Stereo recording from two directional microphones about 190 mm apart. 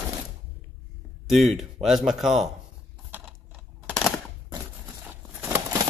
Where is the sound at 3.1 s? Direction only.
10° right (ahead or behind).